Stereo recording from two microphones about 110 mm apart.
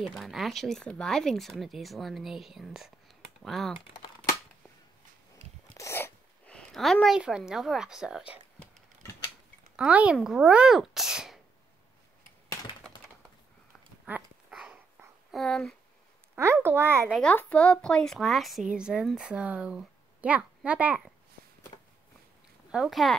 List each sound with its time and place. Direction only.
0.2 s a woman's voice: centre (ahead or behind)
5.8 s a sound: 25° left (ahead or behind)
6.5 s a sound: centre (ahead or behind)
7.2 s a woman's voice: 5° right (ahead or behind)
9.8 s speech: 10° right (ahead or behind)
14.1 s dog: 15° right (ahead or behind)
15.3 s a woman's voice: 5° left (ahead or behind)
16.3 s a child's voice: 20° right (ahead or behind)
17.1 s a woman's voice: 10° left (ahead or behind); by 21.1 s 10° right (ahead or behind)
22.7 s a woman's voice: 5° right (ahead or behind)